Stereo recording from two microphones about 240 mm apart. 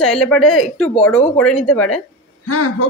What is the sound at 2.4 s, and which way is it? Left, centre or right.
Speech, left.